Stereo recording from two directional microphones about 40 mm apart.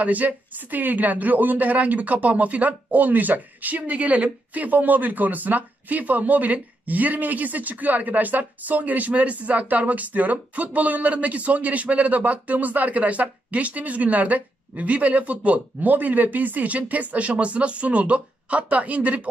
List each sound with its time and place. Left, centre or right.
0.0 s speech: right